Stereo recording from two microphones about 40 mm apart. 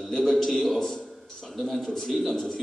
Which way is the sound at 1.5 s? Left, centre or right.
Centre.